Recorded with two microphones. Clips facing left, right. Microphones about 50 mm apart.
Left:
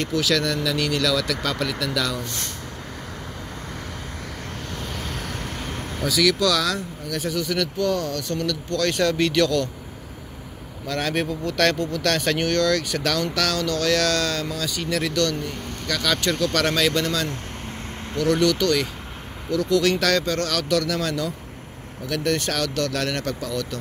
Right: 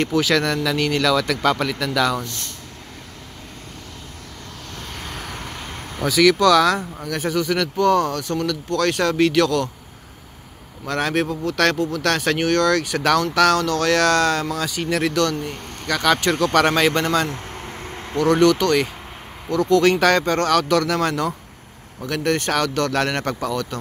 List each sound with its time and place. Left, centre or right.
0.1 s speech: right
5.0 s vehicle: centre
6.0 s speech: right
8.1 s speech: centre
10.9 s speech: centre; by 23.6 s right